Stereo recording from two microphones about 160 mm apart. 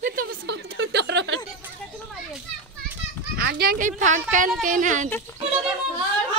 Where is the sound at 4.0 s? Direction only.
50° right (ahead or behind).